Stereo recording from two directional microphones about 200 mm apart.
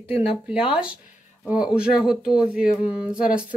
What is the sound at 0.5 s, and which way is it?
Speech, 5° right (ahead or behind).